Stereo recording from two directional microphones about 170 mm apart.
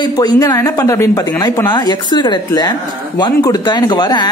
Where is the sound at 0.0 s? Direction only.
25° left (ahead or behind).